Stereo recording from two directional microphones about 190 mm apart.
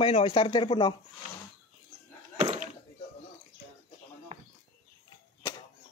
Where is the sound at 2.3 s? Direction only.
40° right (ahead or behind).